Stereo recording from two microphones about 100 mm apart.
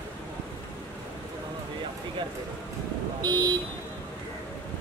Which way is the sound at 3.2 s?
45° right (ahead or behind).